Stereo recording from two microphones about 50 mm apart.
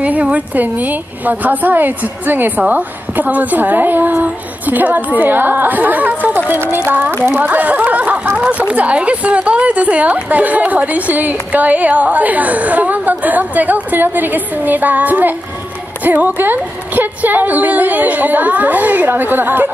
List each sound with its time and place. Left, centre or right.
0.0 s a woman's voice: right